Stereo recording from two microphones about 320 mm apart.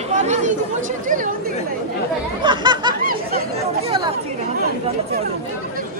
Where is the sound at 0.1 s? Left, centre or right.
Right.